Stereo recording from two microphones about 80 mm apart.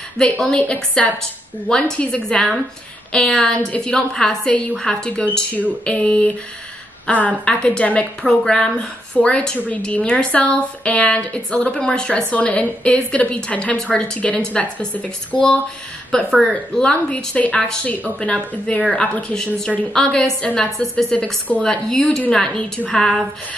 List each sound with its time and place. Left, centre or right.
0.2 s a woman's voice: centre